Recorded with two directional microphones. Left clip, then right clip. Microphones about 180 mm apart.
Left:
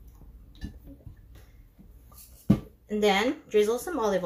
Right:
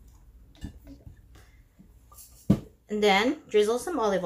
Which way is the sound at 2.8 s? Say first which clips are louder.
Right 2 dB; 15° right (ahead or behind).